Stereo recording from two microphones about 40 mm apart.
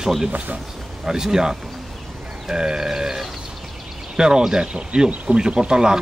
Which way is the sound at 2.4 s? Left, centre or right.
Centre.